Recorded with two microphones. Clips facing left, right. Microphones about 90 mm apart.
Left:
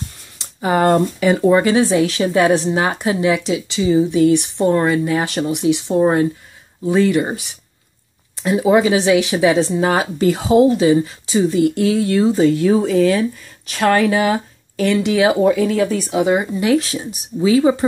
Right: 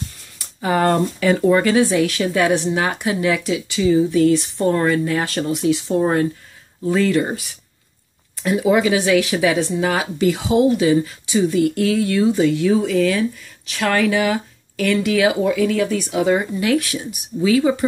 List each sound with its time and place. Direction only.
0.4 s speech: 20° left (ahead or behind)
14.9 s speech: 20° left (ahead or behind)
15.4 s speech: 35° left (ahead or behind)
16.2 s speech: 20° left (ahead or behind)